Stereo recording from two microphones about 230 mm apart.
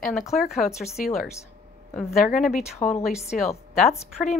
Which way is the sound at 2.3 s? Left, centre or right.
Centre.